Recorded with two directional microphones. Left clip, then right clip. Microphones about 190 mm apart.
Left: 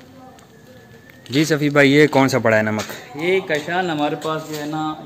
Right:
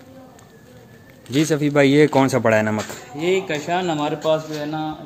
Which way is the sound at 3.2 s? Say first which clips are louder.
Left 2 dB; 60° right (ahead or behind).